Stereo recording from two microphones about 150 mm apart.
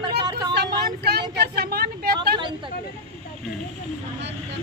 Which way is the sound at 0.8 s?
90° right.